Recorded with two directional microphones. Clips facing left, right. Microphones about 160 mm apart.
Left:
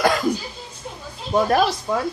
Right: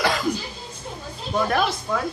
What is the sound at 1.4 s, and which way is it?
Speech, 35° left (ahead or behind).